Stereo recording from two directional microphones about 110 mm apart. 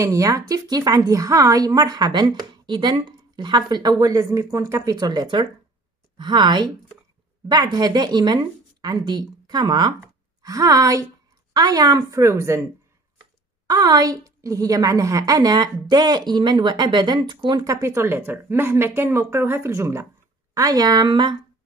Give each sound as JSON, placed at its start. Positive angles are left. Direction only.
{"t": 0.0, "sound": "a woman's voice", "side_deg": -30}
{"t": 13.7, "sound": "a woman's voice", "side_deg": -35}
{"t": 17.6, "sound": "a woman's voice", "side_deg": -25}